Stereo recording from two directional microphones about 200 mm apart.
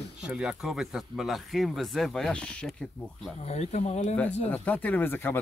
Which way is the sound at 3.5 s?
35° left (ahead or behind).